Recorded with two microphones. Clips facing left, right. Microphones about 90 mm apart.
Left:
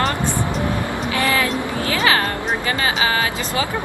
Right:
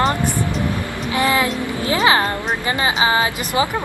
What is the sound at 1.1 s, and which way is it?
Speech, 20° right (ahead or behind).